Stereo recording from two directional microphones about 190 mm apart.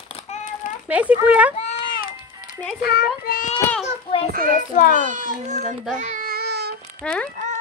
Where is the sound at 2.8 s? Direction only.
50° left (ahead or behind).